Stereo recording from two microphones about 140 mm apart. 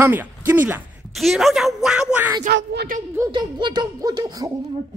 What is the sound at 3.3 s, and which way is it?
A child's voice, 35° right (ahead or behind).